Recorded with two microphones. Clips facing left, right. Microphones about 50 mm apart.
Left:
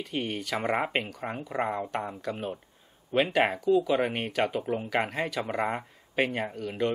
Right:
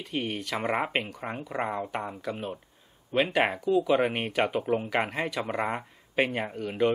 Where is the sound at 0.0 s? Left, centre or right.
Centre.